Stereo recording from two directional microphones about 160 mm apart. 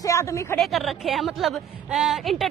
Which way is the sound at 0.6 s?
Centre (ahead or behind).